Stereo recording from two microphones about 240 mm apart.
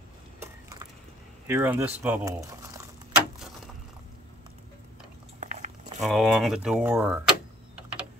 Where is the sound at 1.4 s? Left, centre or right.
Centre.